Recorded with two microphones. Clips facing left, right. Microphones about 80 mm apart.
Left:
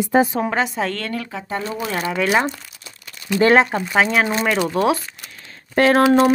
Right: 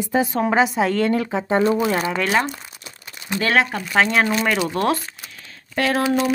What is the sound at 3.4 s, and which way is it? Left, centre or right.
Speech, left.